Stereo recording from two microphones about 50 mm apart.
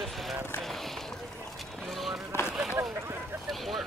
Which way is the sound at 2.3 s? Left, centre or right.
Left.